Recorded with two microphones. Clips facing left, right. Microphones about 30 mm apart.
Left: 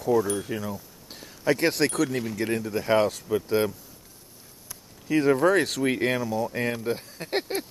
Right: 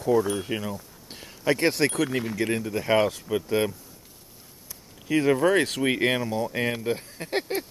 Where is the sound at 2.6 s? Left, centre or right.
Centre.